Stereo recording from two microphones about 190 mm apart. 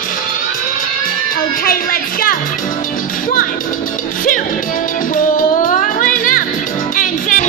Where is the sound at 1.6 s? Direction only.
50° left (ahead or behind).